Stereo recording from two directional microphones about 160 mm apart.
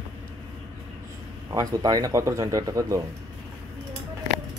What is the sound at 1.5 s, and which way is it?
Speech, 20° right (ahead or behind).